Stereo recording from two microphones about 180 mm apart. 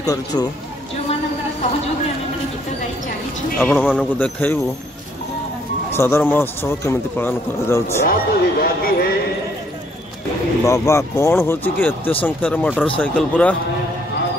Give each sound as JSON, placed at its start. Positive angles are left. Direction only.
{"t": 0.0, "sound": "speech", "side_deg": 20}
{"t": 3.5, "sound": "speech", "side_deg": 10}
{"t": 5.9, "sound": "speech", "side_deg": 15}
{"t": 8.0, "sound": "speech", "side_deg": 55}
{"t": 10.7, "sound": "speech", "side_deg": 15}